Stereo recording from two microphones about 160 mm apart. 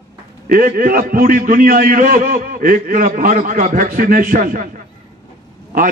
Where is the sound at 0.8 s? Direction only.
60° right (ahead or behind).